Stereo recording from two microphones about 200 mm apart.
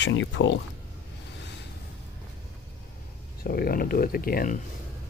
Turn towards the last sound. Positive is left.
turn(degrees=45)  # may be behind; listen again after turning